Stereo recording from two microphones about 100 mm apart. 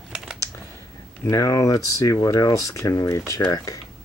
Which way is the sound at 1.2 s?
35° left (ahead or behind).